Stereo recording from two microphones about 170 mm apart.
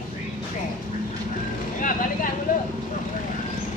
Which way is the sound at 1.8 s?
50° left (ahead or behind).